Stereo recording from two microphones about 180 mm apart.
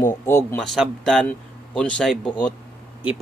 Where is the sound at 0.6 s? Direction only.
Centre (ahead or behind).